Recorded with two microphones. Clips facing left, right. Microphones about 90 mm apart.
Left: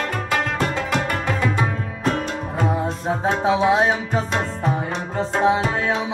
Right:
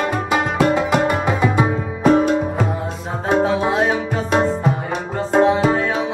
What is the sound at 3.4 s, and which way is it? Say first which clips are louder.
Music: left 1 dB; centre (ahead or behind).